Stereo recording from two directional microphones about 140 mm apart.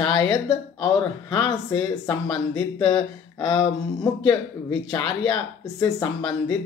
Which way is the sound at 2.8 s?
25° left (ahead or behind).